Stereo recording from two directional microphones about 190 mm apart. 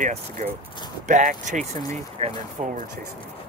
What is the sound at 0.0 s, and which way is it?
Speech, 40° right (ahead or behind).